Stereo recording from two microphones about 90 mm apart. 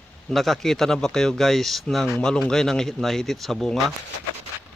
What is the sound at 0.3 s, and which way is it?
Speech, centre (ahead or behind).